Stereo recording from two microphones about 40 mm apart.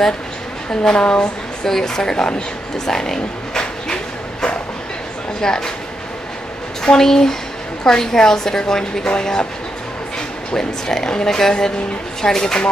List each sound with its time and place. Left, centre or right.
0.8 s a woman's voice: left
2.9 s a sound: centre
5.4 s a woman's voice: centre
6.8 s a woman's voice: centre
10.5 s a woman's voice: centre